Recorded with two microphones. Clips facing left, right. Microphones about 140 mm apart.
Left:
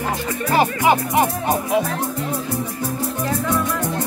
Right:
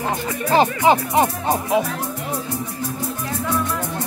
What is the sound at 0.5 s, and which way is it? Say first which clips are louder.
Speech: right 1 dB; 25° right (ahead or behind).